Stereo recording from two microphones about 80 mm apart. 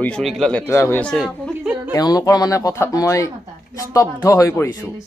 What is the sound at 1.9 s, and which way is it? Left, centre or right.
Speech, left.